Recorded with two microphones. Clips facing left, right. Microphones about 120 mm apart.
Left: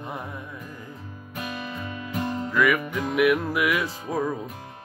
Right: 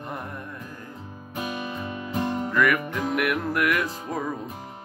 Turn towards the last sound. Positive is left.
turn(degrees=5)  # may be behind; listen again after turning